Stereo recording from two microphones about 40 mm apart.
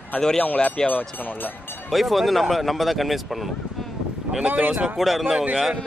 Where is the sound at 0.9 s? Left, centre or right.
Left.